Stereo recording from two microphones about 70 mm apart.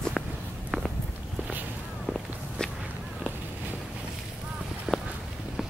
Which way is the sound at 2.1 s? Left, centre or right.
Centre.